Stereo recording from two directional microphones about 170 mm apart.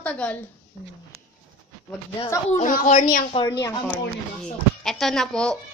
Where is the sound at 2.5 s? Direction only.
50° left (ahead or behind).